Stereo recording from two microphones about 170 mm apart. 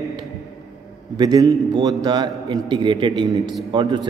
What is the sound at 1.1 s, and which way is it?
A man's voice, 20° right (ahead or behind).